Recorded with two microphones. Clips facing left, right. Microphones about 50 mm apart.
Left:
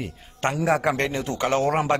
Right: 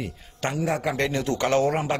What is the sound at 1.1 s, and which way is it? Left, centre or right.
Speech, centre.